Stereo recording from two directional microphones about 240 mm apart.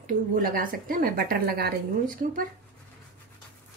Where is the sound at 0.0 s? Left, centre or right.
Right.